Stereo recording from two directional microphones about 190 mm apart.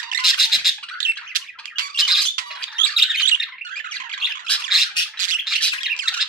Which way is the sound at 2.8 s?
Centre (ahead or behind).